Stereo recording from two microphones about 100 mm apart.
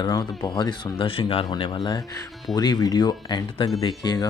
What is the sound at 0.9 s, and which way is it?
Speech, 65° left (ahead or behind).